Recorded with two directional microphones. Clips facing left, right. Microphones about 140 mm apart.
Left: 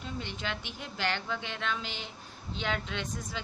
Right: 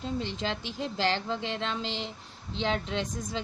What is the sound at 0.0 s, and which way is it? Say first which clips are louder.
A woman's voice: right 6 dB; 30° right (ahead or behind).